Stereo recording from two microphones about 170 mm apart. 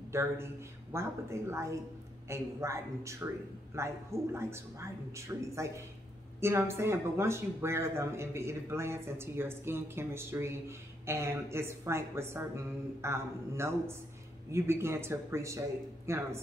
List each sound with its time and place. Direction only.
0.1 s speech: 15° right (ahead or behind)